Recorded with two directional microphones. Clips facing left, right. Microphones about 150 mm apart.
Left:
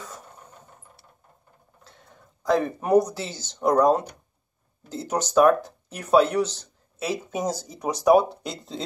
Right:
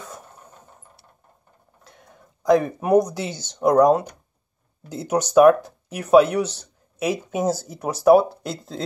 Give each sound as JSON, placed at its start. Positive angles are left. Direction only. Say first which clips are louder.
{"t": 1.9, "sound": "speech", "louder": "right 3 dB", "side_deg": -15}